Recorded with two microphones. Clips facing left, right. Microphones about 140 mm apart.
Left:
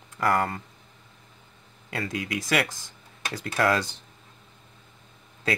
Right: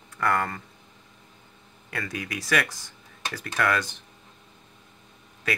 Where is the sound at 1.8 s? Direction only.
25° left (ahead or behind).